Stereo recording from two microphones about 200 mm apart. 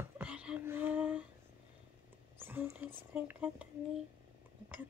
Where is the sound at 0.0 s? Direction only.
5° right (ahead or behind).